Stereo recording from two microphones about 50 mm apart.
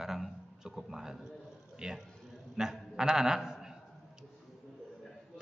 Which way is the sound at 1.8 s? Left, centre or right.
Centre.